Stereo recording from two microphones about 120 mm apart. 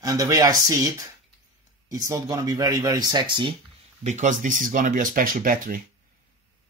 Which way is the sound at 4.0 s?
90° right.